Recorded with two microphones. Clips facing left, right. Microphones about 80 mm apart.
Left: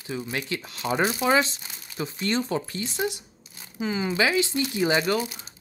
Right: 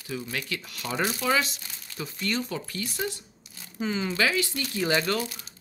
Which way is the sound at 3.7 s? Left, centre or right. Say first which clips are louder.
Left 2 dB; centre.